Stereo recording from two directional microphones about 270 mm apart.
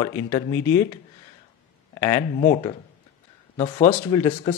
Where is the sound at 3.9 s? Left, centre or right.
Centre.